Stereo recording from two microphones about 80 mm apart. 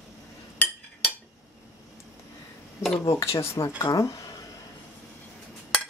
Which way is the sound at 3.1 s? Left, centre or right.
Left.